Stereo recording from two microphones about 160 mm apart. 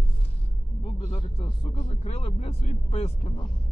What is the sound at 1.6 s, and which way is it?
Speech, 45° left (ahead or behind).